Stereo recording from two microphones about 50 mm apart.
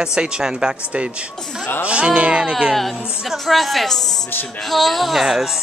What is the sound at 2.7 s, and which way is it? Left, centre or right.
Speech, centre.